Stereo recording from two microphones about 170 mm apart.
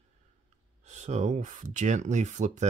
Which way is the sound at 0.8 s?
45° right (ahead or behind).